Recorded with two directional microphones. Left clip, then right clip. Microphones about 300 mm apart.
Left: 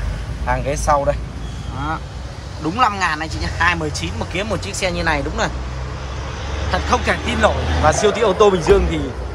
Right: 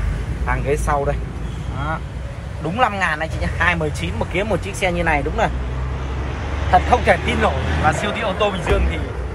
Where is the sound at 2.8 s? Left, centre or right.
Centre.